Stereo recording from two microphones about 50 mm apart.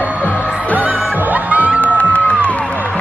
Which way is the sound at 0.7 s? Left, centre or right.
Right.